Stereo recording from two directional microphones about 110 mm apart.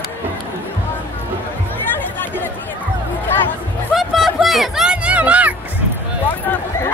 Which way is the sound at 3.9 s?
Centre (ahead or behind).